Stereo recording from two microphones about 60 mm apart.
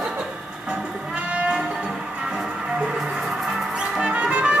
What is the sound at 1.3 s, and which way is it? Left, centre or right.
Music, centre.